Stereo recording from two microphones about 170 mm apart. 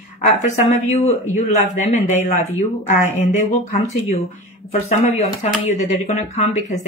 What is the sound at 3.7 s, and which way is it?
Speech, 40° left (ahead or behind).